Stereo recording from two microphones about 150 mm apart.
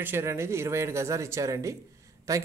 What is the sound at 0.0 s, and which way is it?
Speech, 15° right (ahead or behind).